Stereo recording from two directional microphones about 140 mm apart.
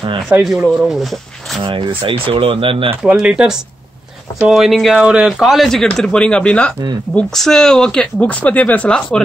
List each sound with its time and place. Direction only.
0.3 s speech: 5° right (ahead or behind)
1.6 s speech: 40° right (ahead or behind)
3.0 s speech: 10° right (ahead or behind)